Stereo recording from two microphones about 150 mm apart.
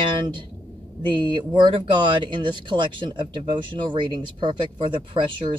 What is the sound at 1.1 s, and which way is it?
Speech, 30° right (ahead or behind).